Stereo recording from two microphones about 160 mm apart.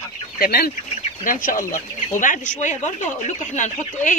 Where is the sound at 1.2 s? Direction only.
55° left (ahead or behind).